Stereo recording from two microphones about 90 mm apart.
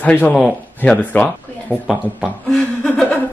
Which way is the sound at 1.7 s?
5° right (ahead or behind).